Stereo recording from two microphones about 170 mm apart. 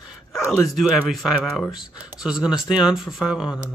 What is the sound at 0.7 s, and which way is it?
Speech, centre (ahead or behind).